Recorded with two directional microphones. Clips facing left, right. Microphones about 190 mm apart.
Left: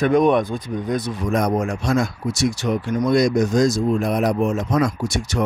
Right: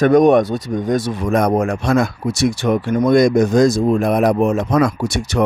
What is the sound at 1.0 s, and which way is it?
Speech, 60° right (ahead or behind).